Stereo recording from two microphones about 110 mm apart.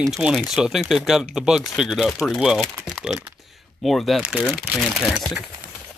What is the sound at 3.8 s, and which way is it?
Speech, centre (ahead or behind).